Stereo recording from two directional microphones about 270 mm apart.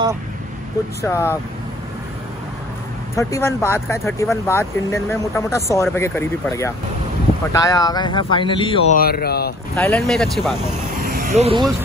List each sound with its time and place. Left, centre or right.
1.0 s speech: centre
3.2 s speech: centre
8.9 s speech: left
9.8 s speech: centre
11.0 s vehicle: right